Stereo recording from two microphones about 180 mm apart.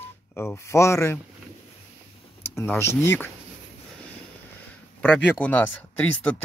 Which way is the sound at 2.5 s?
10° left (ahead or behind).